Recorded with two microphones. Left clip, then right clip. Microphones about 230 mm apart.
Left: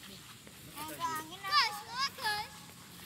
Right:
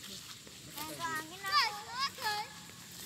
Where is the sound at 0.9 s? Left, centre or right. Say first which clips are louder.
Left 1 dB; left.